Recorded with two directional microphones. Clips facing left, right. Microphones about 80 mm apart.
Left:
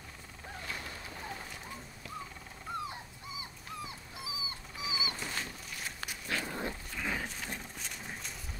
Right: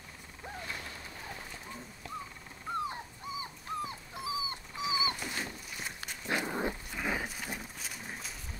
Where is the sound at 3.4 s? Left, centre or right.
Right.